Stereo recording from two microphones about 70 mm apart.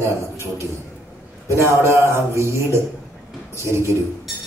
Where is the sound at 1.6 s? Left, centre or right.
Right.